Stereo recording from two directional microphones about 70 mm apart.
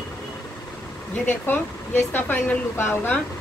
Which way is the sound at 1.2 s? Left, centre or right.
Left.